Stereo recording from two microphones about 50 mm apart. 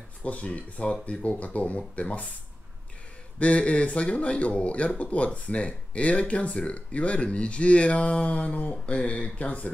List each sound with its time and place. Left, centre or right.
0.2 s speech: left
3.3 s speech: left